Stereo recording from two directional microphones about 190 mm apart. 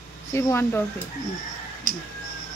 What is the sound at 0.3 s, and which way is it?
Speech, 15° left (ahead or behind).